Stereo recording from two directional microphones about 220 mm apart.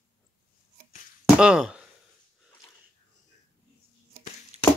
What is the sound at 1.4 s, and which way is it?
Speech, 5° right (ahead or behind).